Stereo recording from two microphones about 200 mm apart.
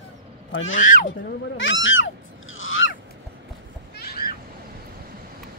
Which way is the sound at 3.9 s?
50° left (ahead or behind).